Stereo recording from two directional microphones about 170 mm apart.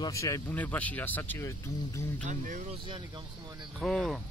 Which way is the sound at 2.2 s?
50° right (ahead or behind).